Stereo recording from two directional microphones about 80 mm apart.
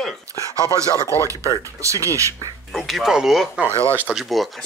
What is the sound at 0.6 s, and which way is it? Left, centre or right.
Speech, right.